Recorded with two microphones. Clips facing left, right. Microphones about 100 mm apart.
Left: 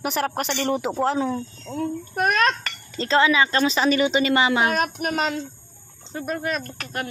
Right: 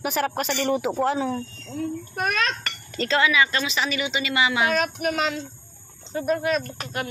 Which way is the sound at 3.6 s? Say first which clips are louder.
Left 7 dB; 40° left (ahead or behind).